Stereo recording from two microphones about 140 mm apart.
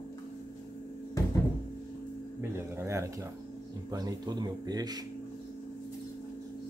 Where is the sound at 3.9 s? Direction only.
25° right (ahead or behind).